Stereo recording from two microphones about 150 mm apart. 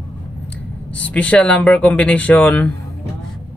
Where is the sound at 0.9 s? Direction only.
10° left (ahead or behind).